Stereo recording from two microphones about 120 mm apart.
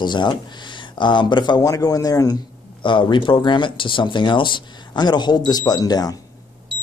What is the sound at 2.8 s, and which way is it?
Speech, 40° left (ahead or behind).